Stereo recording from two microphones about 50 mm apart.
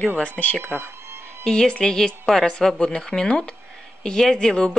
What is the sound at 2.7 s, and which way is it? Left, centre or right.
Speech, centre.